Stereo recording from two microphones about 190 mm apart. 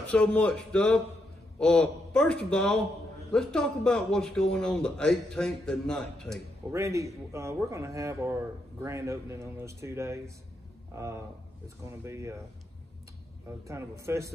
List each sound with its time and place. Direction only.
0.0 s a man's voice: 5° left (ahead or behind)
6.7 s a man's voice: 15° right (ahead or behind)
13.7 s a man's voice: 15° right (ahead or behind)